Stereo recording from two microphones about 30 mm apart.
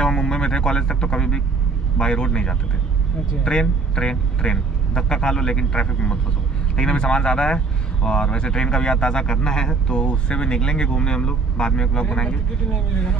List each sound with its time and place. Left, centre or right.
0.0 s speech: left